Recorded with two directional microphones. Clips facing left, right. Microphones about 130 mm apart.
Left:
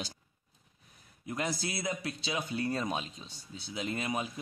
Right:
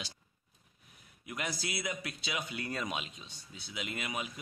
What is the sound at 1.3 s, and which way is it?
Speech, 30° left (ahead or behind).